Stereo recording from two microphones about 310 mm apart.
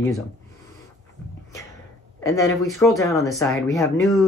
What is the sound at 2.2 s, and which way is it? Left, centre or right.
Speech, centre.